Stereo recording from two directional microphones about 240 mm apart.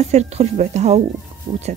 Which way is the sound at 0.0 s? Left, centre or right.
Right.